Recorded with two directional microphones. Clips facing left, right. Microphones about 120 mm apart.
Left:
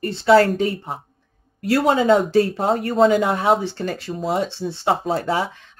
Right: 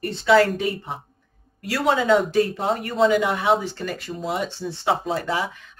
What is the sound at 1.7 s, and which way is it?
Speech, 35° left (ahead or behind).